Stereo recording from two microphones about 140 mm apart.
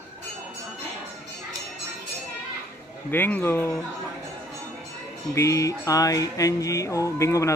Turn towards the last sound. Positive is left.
turn(degrees=20)  # may be behind; listen again after turning